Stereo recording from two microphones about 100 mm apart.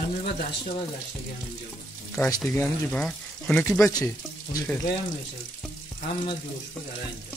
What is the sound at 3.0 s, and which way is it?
Speech, 10° left (ahead or behind).